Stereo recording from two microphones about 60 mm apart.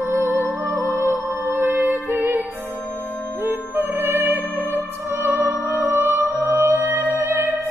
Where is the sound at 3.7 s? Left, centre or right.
Right.